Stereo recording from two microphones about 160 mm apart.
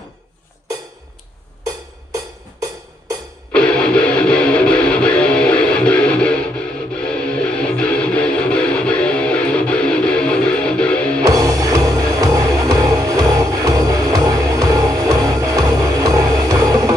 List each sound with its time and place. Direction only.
2.1 s music: 20° right (ahead or behind)
3.5 s music: 5° left (ahead or behind)
11.2 s music: 20° right (ahead or behind)